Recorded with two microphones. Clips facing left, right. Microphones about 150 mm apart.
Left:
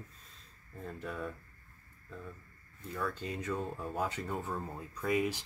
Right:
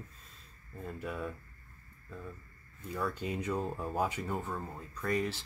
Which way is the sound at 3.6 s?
35° right (ahead or behind).